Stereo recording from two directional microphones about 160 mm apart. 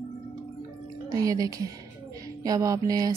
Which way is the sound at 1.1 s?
20° right (ahead or behind).